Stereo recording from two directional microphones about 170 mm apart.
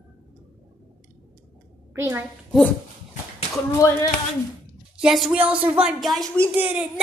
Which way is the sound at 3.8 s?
15° left (ahead or behind).